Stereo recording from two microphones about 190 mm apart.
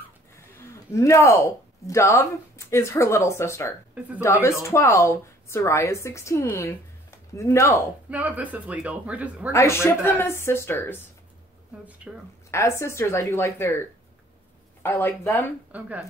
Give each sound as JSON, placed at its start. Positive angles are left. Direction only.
{"t": 0.6, "sound": "a woman's voice", "side_deg": 15}
{"t": 8.1, "sound": "speech", "side_deg": -10}
{"t": 9.5, "sound": "a woman's voice", "side_deg": 15}
{"t": 12.4, "sound": "a woman's voice", "side_deg": 15}
{"t": 15.7, "sound": "speech", "side_deg": -5}